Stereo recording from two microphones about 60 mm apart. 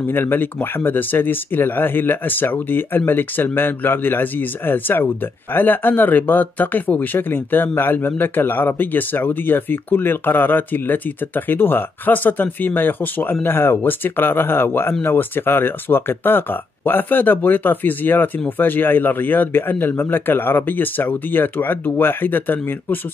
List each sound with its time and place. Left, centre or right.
0.1 s speech: left